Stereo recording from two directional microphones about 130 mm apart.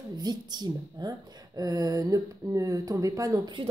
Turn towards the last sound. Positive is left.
turn(degrees=-25)  # may be behind; listen again after turning